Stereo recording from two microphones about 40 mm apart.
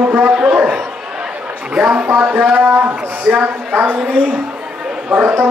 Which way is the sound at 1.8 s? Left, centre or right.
Right.